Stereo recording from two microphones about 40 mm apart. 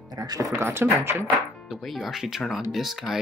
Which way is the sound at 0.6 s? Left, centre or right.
Right.